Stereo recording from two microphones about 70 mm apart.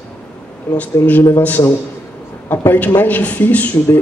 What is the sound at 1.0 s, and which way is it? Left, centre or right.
Speech, left.